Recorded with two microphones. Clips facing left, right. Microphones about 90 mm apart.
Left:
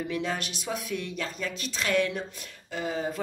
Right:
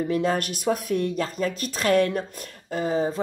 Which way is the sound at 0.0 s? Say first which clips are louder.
Right 7 dB; 40° right (ahead or behind).